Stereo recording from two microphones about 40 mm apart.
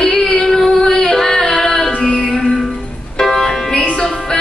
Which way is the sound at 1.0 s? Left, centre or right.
Centre.